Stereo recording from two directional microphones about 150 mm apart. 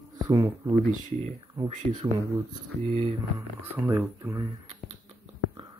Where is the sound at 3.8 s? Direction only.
15° right (ahead or behind).